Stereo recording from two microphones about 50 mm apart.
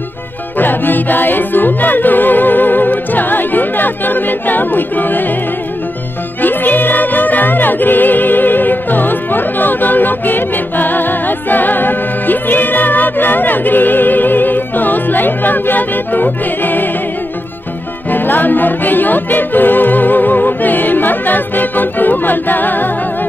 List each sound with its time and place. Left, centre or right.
0.6 s music: left
6.4 s music: left
18.1 s music: left